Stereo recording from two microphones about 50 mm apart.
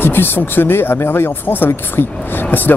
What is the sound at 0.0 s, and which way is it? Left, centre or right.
Speech, left.